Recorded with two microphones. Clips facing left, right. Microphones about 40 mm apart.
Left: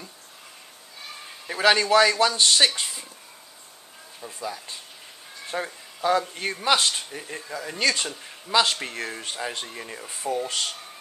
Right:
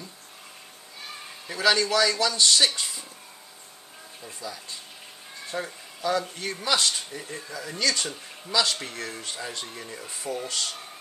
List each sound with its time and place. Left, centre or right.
1.6 s a man's voice: left
4.4 s a man's voice: left
6.9 s a man's voice: centre
9.8 s speech: left